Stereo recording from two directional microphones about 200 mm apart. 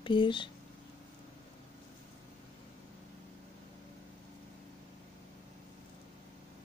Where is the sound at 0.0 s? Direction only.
25° left (ahead or behind).